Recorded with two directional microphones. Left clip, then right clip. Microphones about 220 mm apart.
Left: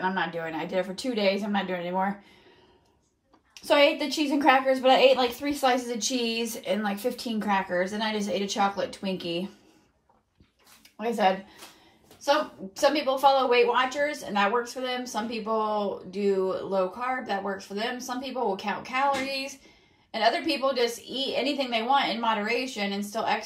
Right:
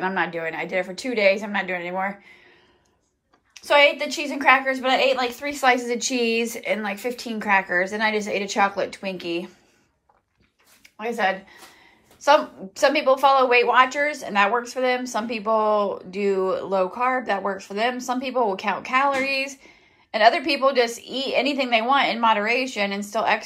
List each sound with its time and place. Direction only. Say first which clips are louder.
0.0 s speech: right 4 dB; 10° left (ahead or behind)
3.6 s speech: right 4 dB; 20° left (ahead or behind)
11.0 s speech: right 1 dB; 20° left (ahead or behind)